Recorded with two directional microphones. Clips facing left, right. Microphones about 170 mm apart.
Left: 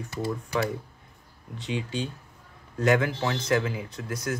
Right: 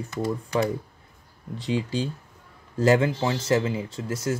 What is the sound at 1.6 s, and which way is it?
Speech, 35° right (ahead or behind).